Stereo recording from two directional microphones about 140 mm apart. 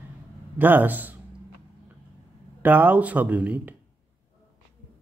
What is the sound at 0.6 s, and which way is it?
Speech, 15° right (ahead or behind).